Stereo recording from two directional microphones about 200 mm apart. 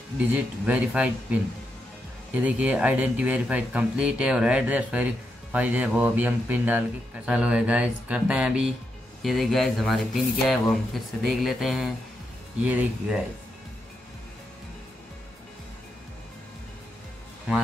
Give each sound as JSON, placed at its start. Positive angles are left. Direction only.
{"t": 0.3, "sound": "speech", "side_deg": -5}